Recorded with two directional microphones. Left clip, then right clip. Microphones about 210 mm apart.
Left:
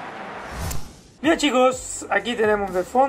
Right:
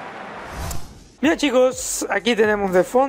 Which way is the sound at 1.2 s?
50° right (ahead or behind).